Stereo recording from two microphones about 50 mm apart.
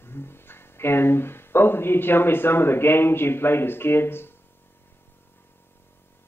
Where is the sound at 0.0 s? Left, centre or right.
Left.